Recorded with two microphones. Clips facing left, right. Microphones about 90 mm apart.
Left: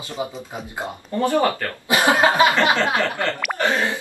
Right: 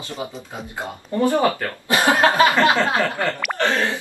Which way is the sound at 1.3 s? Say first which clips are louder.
Even; 20° right (ahead or behind).